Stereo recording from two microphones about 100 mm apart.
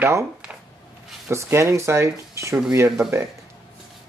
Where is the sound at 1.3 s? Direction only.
30° right (ahead or behind).